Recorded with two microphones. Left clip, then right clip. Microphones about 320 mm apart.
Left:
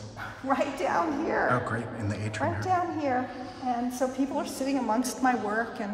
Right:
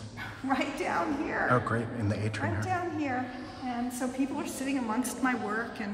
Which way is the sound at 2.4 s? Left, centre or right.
Left.